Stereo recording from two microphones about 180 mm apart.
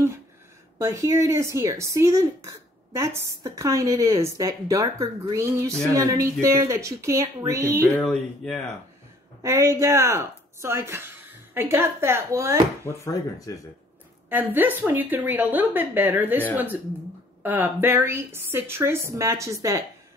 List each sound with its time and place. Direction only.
0.7 s speech: 15° right (ahead or behind)
7.9 s speech: 5° left (ahead or behind)
9.4 s speech: 15° right (ahead or behind)
12.8 s speech: 15° left (ahead or behind)
14.3 s speech: 10° right (ahead or behind)